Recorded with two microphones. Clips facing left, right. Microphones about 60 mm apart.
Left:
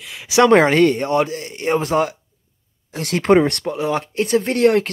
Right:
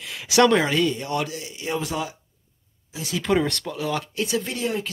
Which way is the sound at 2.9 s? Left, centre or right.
Left.